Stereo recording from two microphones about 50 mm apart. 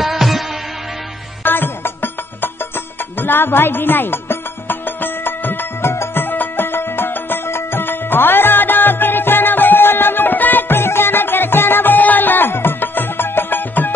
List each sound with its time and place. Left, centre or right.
0.0 s music: centre
1.4 s music: left